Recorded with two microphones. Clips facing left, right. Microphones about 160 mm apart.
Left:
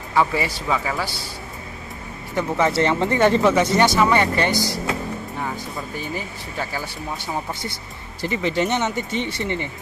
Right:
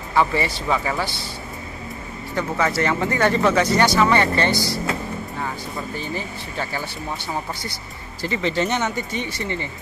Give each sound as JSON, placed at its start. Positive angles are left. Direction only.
{"t": 0.1, "sound": "speech", "side_deg": 10}
{"t": 2.3, "sound": "speech", "side_deg": 20}
{"t": 5.9, "sound": "speech", "side_deg": 10}
{"t": 8.2, "sound": "speech", "side_deg": 15}